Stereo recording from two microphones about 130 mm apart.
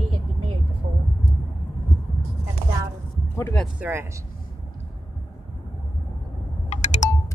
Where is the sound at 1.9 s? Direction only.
Centre (ahead or behind).